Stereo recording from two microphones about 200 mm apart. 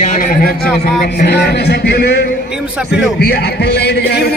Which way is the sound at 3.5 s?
55° left (ahead or behind).